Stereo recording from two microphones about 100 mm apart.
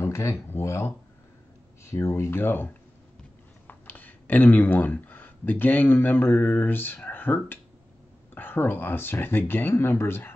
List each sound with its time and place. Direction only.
0.0 s speech: 25° left (ahead or behind)